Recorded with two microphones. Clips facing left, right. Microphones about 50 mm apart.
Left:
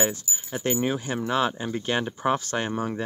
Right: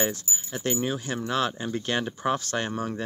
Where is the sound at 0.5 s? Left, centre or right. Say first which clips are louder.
Left 3 dB; centre.